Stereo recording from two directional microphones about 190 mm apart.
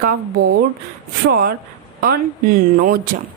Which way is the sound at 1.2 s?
55° right (ahead or behind).